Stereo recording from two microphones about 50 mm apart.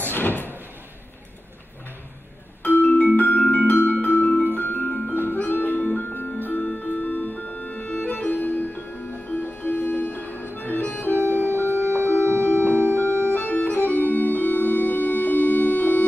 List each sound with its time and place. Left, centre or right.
0.1 s door: left
2.6 s music: left
11.2 s organ: left
11.9 s music: left
12.4 s music: right
13.2 s organ: left